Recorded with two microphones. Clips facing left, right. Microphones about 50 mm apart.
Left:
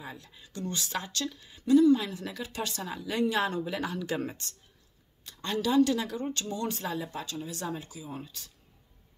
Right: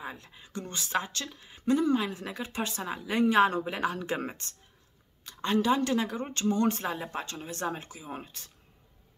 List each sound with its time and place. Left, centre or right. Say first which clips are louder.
0.0 s speech: right 3 dB; right